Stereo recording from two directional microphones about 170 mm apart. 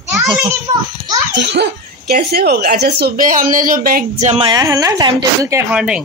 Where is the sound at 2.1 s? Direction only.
65° right (ahead or behind).